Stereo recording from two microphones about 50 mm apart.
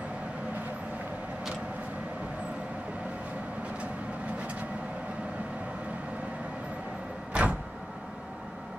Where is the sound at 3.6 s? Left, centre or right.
Right.